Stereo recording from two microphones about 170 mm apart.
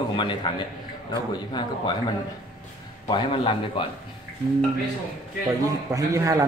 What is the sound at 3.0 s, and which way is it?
Speech, 25° left (ahead or behind).